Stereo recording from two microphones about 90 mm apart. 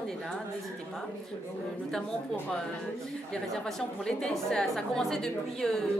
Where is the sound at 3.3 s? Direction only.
5° left (ahead or behind).